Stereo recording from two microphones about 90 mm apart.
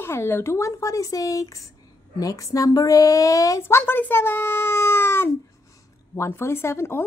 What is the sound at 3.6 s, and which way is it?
Speech, 25° left (ahead or behind).